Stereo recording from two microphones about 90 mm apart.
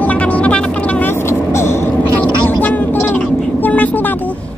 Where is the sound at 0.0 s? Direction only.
15° left (ahead or behind).